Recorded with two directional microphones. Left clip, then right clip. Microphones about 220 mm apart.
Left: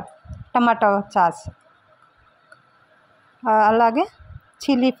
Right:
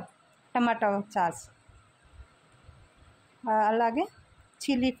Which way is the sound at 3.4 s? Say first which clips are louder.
Left 9 dB; 20° left (ahead or behind).